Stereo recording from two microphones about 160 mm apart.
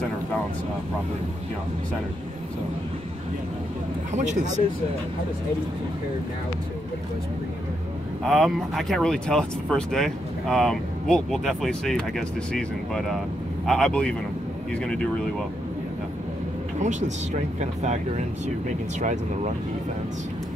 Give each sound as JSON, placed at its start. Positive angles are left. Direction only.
{"t": 4.1, "sound": "speech", "side_deg": -50}
{"t": 8.3, "sound": "speech", "side_deg": 0}
{"t": 17.6, "sound": "speech", "side_deg": -45}